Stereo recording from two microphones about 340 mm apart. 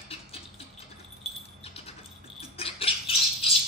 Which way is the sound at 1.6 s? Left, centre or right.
Centre.